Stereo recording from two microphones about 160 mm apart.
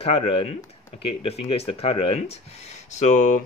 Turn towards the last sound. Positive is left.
turn(degrees=50)  # may be behind; listen again after turning